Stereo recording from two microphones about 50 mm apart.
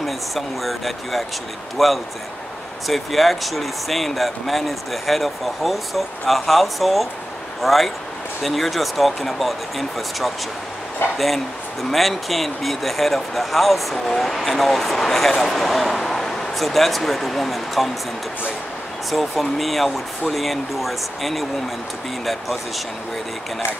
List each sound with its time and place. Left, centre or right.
0.0 s speech: centre
19.0 s speech: centre